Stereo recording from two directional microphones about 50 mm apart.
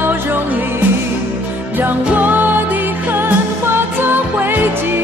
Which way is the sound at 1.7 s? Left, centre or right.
Right.